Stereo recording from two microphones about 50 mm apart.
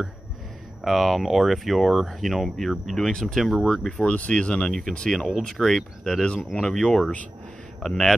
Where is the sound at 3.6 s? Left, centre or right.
Centre.